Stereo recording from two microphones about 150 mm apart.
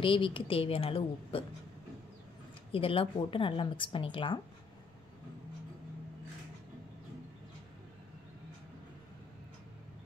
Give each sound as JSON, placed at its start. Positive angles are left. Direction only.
{"t": 0.0, "sound": "a woman's voice", "side_deg": 35}
{"t": 2.7, "sound": "a woman's voice", "side_deg": 35}